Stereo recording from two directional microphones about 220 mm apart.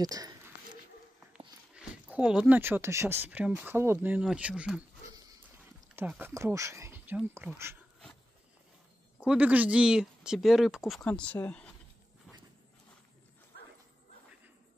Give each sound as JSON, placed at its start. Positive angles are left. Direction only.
{"t": 0.0, "sound": "speech", "side_deg": -15}
{"t": 1.7, "sound": "speech", "side_deg": -5}
{"t": 5.9, "sound": "speech", "side_deg": -10}
{"t": 9.2, "sound": "speech", "side_deg": -5}